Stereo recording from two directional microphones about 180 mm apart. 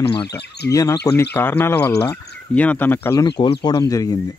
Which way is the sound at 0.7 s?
20° left (ahead or behind).